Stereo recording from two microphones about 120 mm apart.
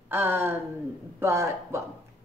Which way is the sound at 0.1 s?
20° right (ahead or behind).